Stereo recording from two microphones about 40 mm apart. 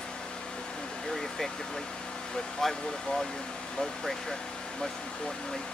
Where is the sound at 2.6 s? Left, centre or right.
Centre.